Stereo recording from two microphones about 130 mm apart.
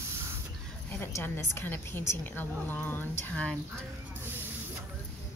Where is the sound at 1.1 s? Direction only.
20° left (ahead or behind).